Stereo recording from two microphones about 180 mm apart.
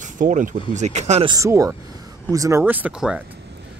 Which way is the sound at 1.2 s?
20° right (ahead or behind).